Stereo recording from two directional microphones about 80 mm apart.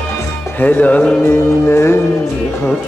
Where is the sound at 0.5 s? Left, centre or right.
Left.